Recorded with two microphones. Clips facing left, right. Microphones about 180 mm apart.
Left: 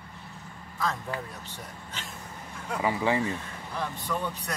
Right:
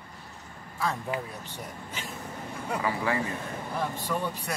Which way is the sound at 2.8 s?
20° left (ahead or behind).